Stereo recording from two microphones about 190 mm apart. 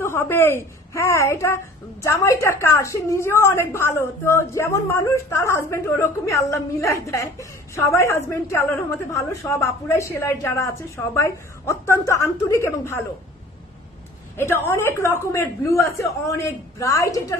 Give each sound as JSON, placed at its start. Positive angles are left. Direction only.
{"t": 0.0, "sound": "a woman's voice", "side_deg": 15}
{"t": 14.3, "sound": "a woman's voice", "side_deg": 15}